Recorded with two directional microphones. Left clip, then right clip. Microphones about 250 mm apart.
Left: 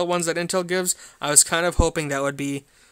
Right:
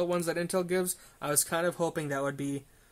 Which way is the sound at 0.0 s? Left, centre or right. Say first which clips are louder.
Left 7 dB; left.